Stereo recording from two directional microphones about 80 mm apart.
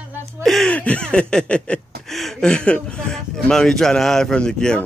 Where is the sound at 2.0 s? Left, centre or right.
Centre.